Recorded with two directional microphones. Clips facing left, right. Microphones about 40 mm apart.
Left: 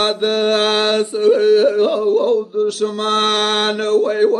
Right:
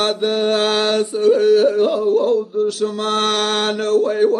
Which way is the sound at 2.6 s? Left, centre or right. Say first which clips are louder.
Left 1 dB; left.